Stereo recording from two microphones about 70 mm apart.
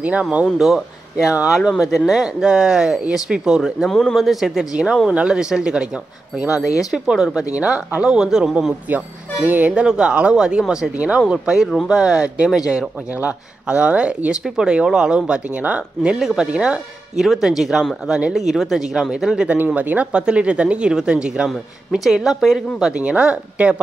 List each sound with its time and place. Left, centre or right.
0.0 s speech: right
0.6 s speech: centre
3.8 s speech: centre
6.9 s speech: centre
8.8 s speech: right; by 12.9 s centre
13.1 s speech: centre
19.5 s speech: right; by 22.6 s centre
22.8 s speech: centre